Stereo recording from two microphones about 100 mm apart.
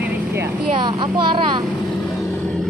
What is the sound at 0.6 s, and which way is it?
A child's voice, 55° right (ahead or behind).